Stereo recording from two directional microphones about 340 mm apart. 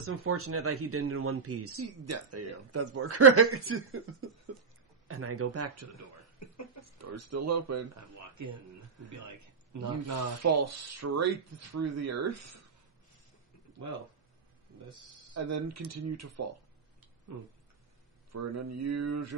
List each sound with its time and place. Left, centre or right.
0.0 s speech: right
4.5 s a sound: right
5.0 s speech: right
15.3 s speech: right
18.3 s speech: right